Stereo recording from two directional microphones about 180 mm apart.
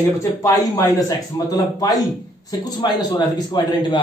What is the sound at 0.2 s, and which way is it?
A man's voice, 20° left (ahead or behind).